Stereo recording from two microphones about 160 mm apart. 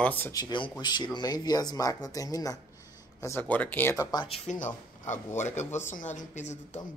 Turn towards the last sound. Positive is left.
turn(degrees=50)  # may be behind; listen again after turning